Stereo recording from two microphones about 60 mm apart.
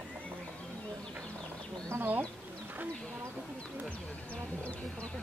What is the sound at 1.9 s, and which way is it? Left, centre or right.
Bee, right.